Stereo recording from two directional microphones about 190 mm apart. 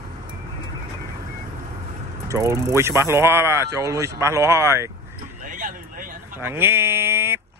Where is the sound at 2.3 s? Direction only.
15° right (ahead or behind).